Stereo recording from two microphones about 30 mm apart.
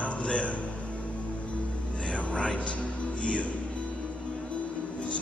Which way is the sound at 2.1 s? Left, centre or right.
Left.